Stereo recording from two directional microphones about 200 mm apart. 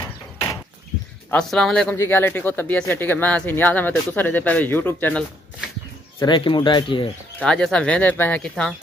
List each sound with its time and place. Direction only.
1.3 s speech: 5° left (ahead or behind)
6.1 s speech: 25° left (ahead or behind)
7.3 s speech: 5° left (ahead or behind)